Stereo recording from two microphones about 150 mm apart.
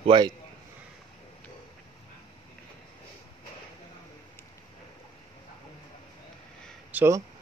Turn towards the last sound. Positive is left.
turn(degrees=-20)  # may be behind; listen again after turning